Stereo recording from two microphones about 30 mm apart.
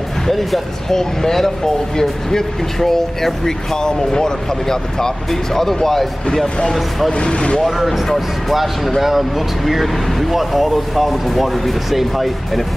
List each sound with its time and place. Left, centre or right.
0.3 s speech: centre
7.1 s speech: left
8.5 s speech: centre